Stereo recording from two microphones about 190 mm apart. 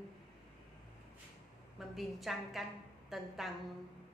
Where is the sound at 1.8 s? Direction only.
Centre (ahead or behind).